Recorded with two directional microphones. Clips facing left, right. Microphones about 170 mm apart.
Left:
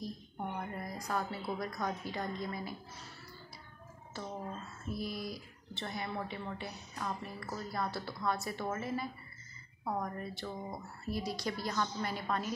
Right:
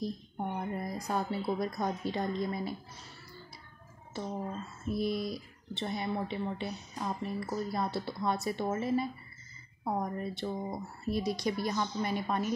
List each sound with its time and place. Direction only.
0.0 s speech: 25° right (ahead or behind)
4.9 s speech: 25° right (ahead or behind)